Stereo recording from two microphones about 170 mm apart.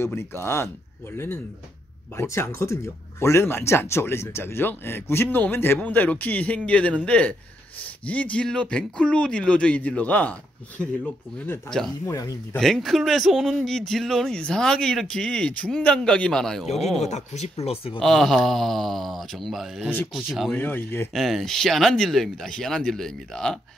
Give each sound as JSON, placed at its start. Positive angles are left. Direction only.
{"t": 0.0, "sound": "speech", "side_deg": 15}
{"t": 11.3, "sound": "speech", "side_deg": 10}
{"t": 12.1, "sound": "speech", "side_deg": 20}
{"t": 12.5, "sound": "speech", "side_deg": 0}
{"t": 17.0, "sound": "speech", "side_deg": 40}
{"t": 18.0, "sound": "speech", "side_deg": 0}
{"t": 20.5, "sound": "speech", "side_deg": 10}
{"t": 21.1, "sound": "speech", "side_deg": 0}